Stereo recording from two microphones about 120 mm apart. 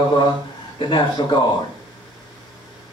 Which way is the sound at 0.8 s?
40° left (ahead or behind).